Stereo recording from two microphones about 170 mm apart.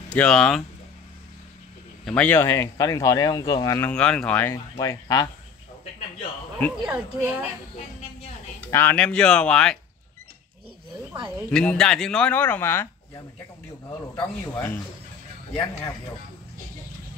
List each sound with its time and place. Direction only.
0.1 s speech: 5° left (ahead or behind)
2.0 s speech: 10° left (ahead or behind)
3.9 s speech: 5° left (ahead or behind)
6.7 s a woman's voice: 5° right (ahead or behind)
8.6 s speech: 10° left (ahead or behind)
11.5 s speech: 5° left (ahead or behind)
14.4 s speech: 10° left (ahead or behind)